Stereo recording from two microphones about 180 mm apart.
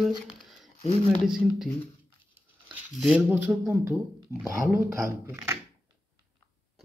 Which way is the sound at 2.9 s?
Centre (ahead or behind).